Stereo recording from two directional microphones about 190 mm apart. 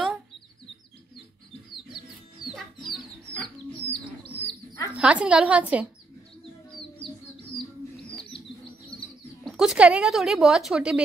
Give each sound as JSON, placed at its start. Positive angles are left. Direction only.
{"t": 2.9, "sound": "chicken", "side_deg": 5}
{"t": 4.3, "sound": "bird", "side_deg": 15}
{"t": 4.9, "sound": "a woman's voice", "side_deg": -5}
{"t": 9.4, "sound": "a woman's voice", "side_deg": 0}